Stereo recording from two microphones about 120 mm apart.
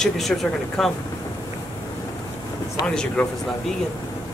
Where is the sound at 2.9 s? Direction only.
5° left (ahead or behind).